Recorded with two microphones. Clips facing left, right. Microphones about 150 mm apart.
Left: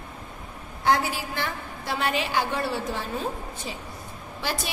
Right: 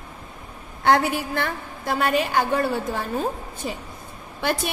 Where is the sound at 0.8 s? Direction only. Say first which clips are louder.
Right 4 dB; 60° right (ahead or behind).